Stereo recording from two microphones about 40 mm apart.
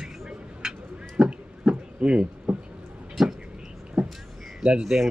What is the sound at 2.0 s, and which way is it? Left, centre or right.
Speech, right.